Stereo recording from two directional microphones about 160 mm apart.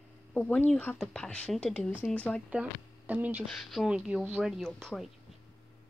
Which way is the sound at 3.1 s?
10° right (ahead or behind).